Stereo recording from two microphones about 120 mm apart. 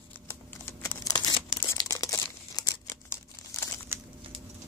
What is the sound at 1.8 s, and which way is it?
Crumpling, 30° left (ahead or behind).